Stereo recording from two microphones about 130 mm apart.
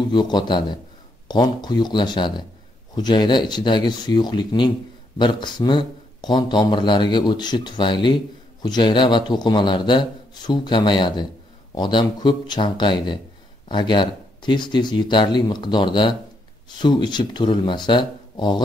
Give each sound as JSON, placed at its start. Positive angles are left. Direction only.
{"t": 0.1, "sound": "speech", "side_deg": 35}